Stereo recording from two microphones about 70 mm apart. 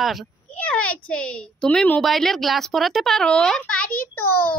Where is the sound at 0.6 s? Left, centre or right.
Centre.